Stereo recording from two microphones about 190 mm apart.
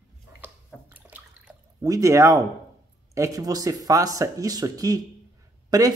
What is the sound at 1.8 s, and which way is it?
Speech, 15° right (ahead or behind).